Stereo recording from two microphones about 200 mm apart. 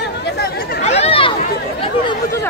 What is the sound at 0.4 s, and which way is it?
Chatter, 50° left (ahead or behind).